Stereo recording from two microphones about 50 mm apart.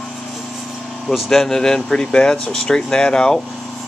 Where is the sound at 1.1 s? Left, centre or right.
Centre.